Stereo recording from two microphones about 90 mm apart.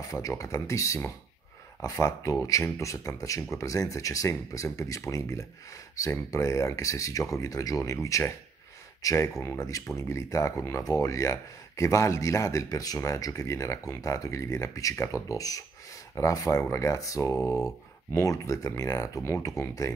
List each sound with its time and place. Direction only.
0.0 s speech: 40° left (ahead or behind)